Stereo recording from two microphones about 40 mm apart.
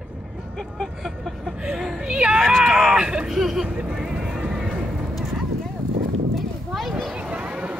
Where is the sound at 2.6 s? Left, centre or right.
Centre.